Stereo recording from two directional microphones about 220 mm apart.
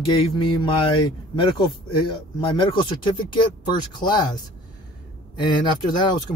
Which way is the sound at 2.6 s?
20° left (ahead or behind).